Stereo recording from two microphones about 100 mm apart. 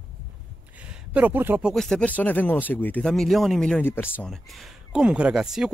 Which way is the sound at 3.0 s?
5° left (ahead or behind).